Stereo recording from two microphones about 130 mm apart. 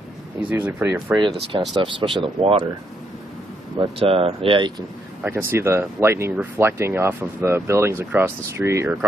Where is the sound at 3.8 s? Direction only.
45° right (ahead or behind).